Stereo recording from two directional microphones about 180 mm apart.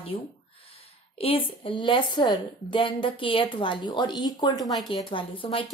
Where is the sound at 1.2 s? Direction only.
30° left (ahead or behind).